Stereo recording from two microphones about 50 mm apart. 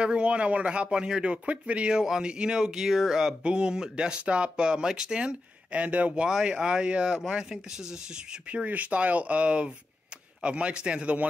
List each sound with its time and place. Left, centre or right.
0.0 s speech: right
6.2 s speech: centre
8.5 s speech: right